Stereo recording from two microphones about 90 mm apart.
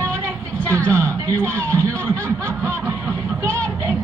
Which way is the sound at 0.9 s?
30° right (ahead or behind).